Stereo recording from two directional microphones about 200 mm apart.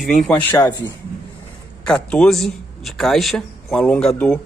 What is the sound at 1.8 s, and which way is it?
A man's voice, 5° left (ahead or behind).